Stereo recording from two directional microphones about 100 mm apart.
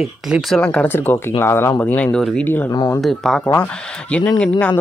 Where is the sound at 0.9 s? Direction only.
25° left (ahead or behind); by 2.4 s 5° left (ahead or behind).